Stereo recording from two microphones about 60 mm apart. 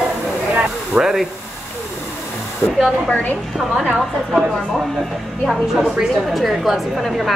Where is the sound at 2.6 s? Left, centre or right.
Left.